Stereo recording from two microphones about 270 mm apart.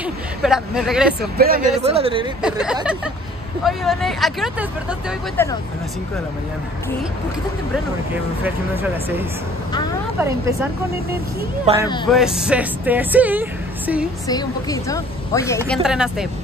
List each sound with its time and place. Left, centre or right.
0.0 s speech: centre
1.2 s speech: right
1.8 s speech: right
2.4 s a woman's voice: centre
10.1 s speech: centre
11.7 s speech: right
12.1 s speech: centre
14.2 s a woman's voice: centre
15.8 s speech: centre